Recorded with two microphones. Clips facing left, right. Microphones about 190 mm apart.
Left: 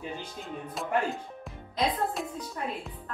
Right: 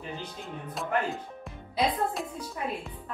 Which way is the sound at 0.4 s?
Centre (ahead or behind).